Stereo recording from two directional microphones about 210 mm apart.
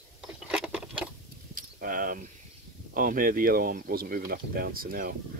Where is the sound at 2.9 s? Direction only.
40° right (ahead or behind).